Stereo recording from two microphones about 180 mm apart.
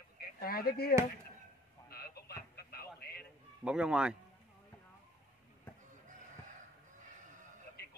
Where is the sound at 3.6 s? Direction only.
5° right (ahead or behind).